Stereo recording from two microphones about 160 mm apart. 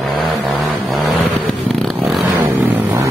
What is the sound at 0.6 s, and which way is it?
Vehicle, centre (ahead or behind).